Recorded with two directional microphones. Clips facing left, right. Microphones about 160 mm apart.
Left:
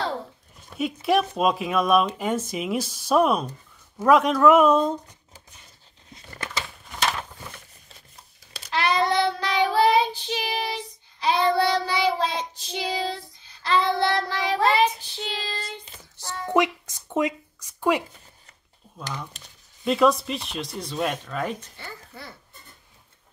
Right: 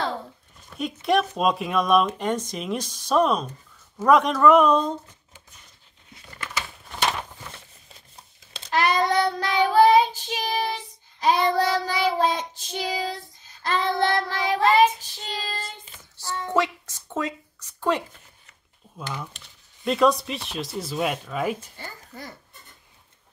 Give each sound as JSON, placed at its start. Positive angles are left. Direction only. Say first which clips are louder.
{"t": 0.7, "sound": "speech", "louder": "even", "side_deg": 5}
{"t": 6.1, "sound": "crumpling", "louder": "left 2 dB", "side_deg": 40}
{"t": 8.7, "sound": "child singing", "louder": "right 1 dB", "side_deg": -45}
{"t": 16.2, "sound": "a sound", "louder": "left 2 dB", "side_deg": 15}
{"t": 19.8, "sound": "speech", "louder": "even", "side_deg": 0}
{"t": 21.7, "sound": "a child's voice", "louder": "right 1 dB", "side_deg": -45}